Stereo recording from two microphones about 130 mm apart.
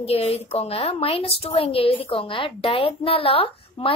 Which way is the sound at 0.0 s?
50° left (ahead or behind).